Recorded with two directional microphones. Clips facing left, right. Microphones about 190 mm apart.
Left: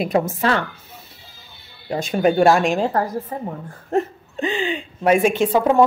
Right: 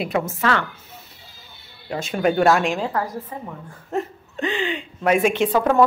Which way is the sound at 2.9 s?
40° left (ahead or behind).